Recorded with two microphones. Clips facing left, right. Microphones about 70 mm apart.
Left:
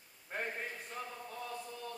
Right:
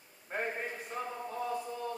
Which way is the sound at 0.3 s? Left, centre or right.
Centre.